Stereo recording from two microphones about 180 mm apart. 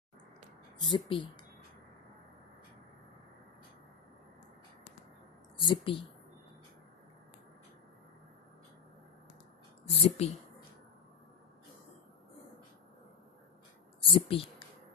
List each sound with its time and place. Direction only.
0.7 s speech: 25° left (ahead or behind)
5.6 s speech: 30° left (ahead or behind)
9.8 s speech: 35° left (ahead or behind)
14.0 s speech: 30° left (ahead or behind)